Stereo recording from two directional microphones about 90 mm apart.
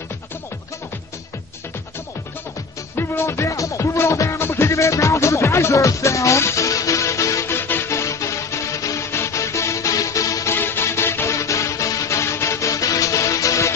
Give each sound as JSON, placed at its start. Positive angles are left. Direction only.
{"t": 3.0, "sound": "music", "side_deg": 30}
{"t": 10.5, "sound": "music", "side_deg": 25}